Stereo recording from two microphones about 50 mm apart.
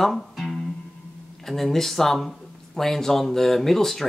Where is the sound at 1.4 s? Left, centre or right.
Centre.